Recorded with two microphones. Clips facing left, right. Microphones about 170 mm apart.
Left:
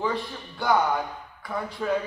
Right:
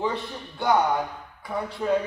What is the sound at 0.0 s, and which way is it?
A man's voice, 20° right (ahead or behind).